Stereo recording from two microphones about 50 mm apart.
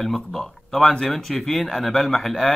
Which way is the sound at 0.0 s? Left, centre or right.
Centre.